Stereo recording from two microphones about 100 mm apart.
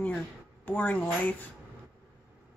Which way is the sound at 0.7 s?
15° left (ahead or behind).